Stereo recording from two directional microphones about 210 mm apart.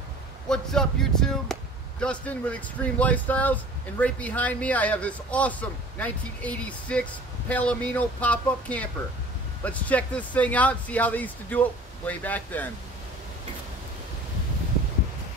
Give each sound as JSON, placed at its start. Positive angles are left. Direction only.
{"t": 0.5, "sound": "speech", "side_deg": 5}